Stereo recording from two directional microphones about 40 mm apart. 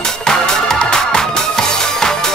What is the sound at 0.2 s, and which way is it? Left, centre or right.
Music, centre.